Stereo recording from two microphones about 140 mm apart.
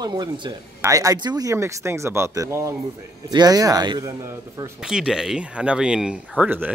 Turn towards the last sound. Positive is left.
turn(degrees=-10)  # may be behind; listen again after turning